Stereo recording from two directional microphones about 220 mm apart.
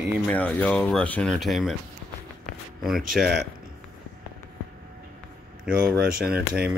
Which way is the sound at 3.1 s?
Centre (ahead or behind).